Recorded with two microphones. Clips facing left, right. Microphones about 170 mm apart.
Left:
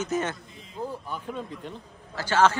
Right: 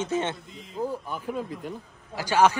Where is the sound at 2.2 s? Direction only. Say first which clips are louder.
Right 1 dB; 15° right (ahead or behind).